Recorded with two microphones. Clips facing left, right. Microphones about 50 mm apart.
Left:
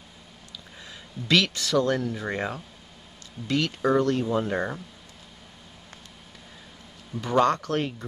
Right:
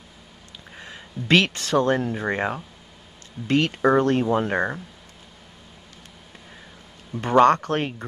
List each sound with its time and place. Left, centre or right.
0.7 s speech: right
7.2 s speech: right